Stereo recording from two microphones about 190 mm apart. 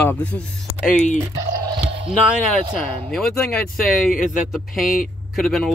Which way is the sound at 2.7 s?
Centre (ahead or behind).